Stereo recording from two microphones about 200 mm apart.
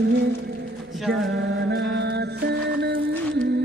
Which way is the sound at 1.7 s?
60° right (ahead or behind).